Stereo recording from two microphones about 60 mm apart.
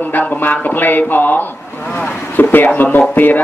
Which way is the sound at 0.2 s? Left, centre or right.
Left.